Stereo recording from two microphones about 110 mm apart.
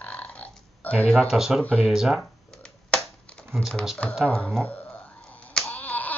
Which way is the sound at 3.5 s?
Centre (ahead or behind).